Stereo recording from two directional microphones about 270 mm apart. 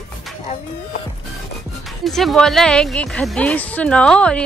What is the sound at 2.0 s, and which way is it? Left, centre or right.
Speech, centre.